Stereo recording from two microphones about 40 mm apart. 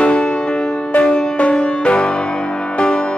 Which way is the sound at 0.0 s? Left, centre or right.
Left.